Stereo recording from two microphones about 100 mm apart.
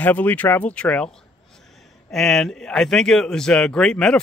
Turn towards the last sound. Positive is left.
turn(degrees=10)  # may be behind; listen again after turning